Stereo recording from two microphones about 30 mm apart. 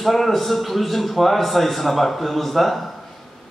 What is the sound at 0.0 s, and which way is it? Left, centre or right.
Speech, centre.